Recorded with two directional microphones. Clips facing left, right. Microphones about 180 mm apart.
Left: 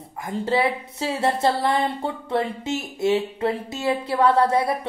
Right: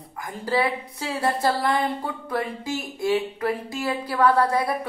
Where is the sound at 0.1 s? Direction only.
25° left (ahead or behind).